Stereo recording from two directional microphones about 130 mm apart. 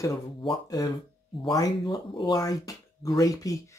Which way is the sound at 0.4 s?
30° left (ahead or behind).